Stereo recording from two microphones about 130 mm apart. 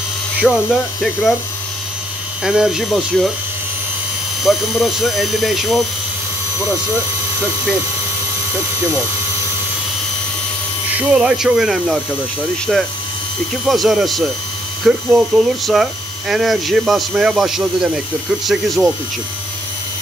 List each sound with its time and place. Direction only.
0.4 s speech: centre (ahead or behind)
2.4 s speech: 5° right (ahead or behind)
4.4 s speech: centre (ahead or behind)
11.0 s speech: 5° right (ahead or behind)
13.7 s speech: centre (ahead or behind)